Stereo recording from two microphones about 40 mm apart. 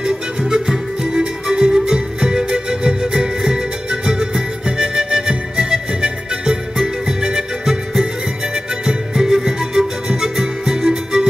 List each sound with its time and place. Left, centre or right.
0.0 s music: centre
8.8 s music: centre